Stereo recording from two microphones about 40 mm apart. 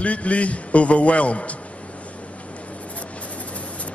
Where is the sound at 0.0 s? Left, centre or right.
Left.